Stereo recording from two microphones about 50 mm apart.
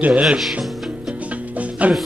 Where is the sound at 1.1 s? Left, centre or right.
Right.